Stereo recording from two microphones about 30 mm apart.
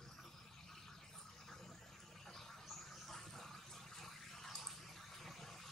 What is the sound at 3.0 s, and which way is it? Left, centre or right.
Water, centre.